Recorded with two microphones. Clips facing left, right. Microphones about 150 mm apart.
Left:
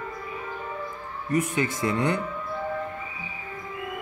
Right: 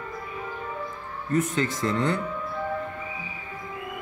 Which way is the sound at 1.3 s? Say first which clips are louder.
Even; 10° left (ahead or behind).